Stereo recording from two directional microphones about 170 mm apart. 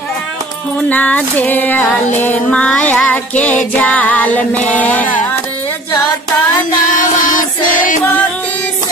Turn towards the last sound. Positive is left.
turn(degrees=50)  # may be behind; listen again after turning